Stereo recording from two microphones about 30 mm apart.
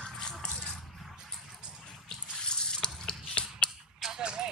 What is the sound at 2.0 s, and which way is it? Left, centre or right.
Drip, left.